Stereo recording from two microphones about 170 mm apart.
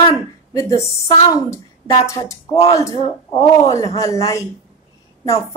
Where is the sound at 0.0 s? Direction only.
20° left (ahead or behind).